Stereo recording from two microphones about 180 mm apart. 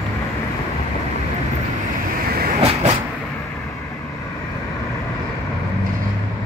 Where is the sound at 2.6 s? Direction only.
35° right (ahead or behind).